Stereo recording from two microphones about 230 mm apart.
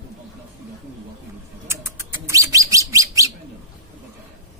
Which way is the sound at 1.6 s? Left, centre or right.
Centre.